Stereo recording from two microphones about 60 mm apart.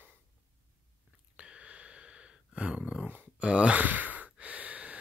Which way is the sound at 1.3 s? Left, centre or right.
Centre.